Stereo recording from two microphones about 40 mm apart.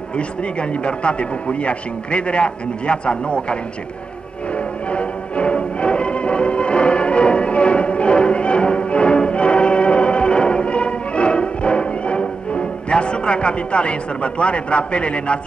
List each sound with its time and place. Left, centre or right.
0.6 s a man's voice: left
4.9 s music: left